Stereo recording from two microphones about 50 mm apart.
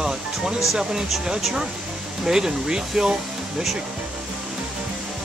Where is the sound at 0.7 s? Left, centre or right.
Centre.